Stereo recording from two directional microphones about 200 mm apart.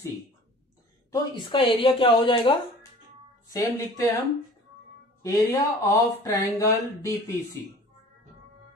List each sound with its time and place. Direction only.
1.1 s a woman's voice: 20° left (ahead or behind)
5.2 s speech: 15° left (ahead or behind)